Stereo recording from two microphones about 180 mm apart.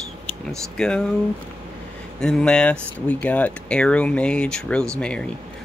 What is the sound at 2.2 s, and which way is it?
Speech, 5° left (ahead or behind).